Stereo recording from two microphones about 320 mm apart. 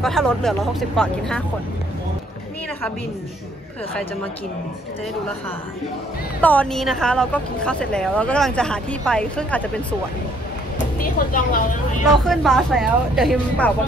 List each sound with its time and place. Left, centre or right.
0.0 s speech: centre
6.4 s speech: centre
11.0 s speech: left
12.3 s speech: centre